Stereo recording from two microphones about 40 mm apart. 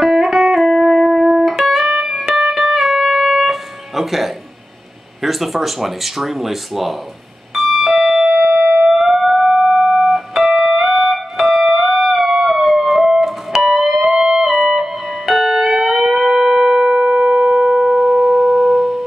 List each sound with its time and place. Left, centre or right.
0.0 s music: centre
2.2 s music: centre
2.5 s music: centre
5.2 s speech: centre
7.5 s alarm clock: centre
8.3 s a sound: right
8.8 s music: centre